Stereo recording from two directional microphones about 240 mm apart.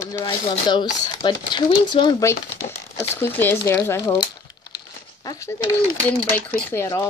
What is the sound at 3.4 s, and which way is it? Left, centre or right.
Speech, centre.